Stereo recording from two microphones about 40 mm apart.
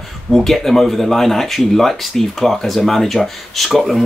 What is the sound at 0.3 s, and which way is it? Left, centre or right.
Speech, centre.